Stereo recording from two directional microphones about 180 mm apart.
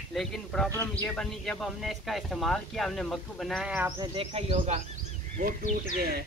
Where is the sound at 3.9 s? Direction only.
25° right (ahead or behind).